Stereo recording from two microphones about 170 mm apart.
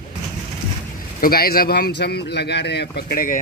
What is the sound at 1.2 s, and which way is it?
A man's voice, 60° left (ahead or behind).